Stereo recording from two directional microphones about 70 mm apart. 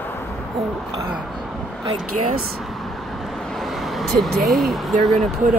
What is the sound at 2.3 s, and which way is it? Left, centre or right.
Speech, centre.